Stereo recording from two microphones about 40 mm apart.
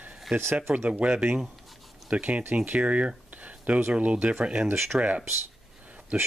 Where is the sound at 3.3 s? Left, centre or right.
Right.